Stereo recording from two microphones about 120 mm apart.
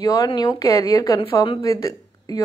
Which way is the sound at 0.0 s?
30° left (ahead or behind).